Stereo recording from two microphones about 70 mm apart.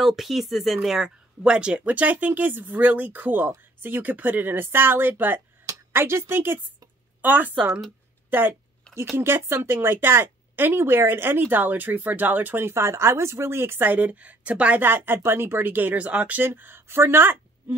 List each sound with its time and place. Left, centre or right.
0.0 s speech: centre
14.8 s speech: right
16.4 s speech: right